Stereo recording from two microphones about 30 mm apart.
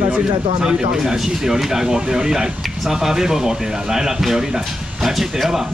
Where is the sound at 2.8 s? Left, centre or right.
Centre.